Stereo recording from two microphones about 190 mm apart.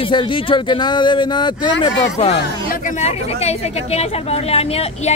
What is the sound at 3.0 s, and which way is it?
A woman's voice, 35° left (ahead or behind).